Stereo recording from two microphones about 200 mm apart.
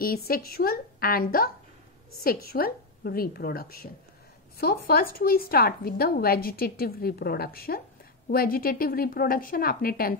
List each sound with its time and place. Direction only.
0.0 s a woman's voice: 50° left (ahead or behind)